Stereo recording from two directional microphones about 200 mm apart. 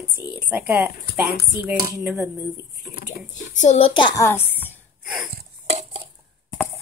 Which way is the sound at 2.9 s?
40° left (ahead or behind).